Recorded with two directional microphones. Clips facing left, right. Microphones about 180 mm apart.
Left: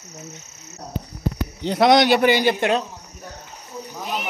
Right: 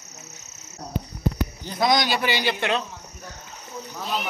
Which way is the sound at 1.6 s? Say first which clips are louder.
Left 7 dB; 70° left (ahead or behind).